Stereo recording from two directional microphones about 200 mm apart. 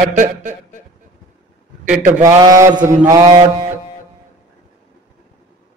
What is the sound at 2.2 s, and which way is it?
Mantra, 15° right (ahead or behind).